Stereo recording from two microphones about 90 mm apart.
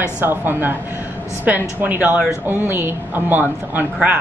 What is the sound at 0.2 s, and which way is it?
A woman's voice, 25° right (ahead or behind).